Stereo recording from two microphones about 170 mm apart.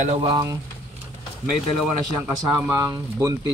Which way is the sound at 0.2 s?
25° right (ahead or behind).